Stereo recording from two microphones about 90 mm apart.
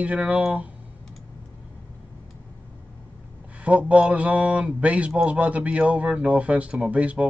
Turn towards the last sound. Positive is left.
turn(degrees=-15)  # may be behind; listen again after turning